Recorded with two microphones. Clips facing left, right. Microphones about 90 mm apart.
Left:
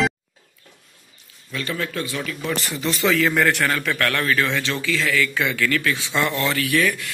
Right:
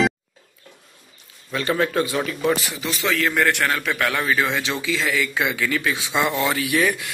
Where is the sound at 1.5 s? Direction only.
30° right (ahead or behind).